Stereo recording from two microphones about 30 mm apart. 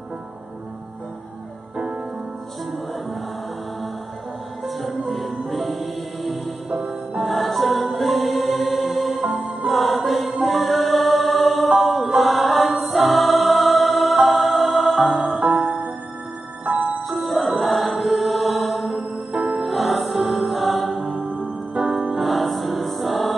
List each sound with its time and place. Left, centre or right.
4.6 s music: centre
11.8 s choir: centre
15.4 s music: right
17.1 s music: centre
20.9 s music: centre
21.7 s music: right
22.2 s music: centre